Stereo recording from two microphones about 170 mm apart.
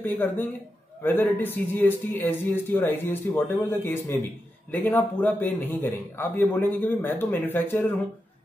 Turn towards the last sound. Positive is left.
turn(degrees=10)  # may be behind; listen again after turning